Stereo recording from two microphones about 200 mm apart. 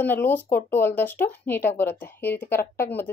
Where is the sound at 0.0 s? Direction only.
10° left (ahead or behind).